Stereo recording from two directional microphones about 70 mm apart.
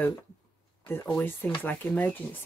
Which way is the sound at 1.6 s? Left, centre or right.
Left.